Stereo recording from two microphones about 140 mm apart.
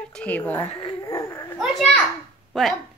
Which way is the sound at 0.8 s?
25° left (ahead or behind).